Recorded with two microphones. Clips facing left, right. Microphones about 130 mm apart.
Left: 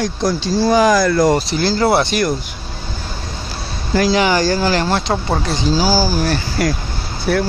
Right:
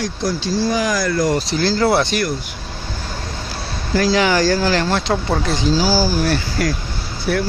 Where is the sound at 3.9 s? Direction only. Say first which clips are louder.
Left 2 dB; 20° left (ahead or behind).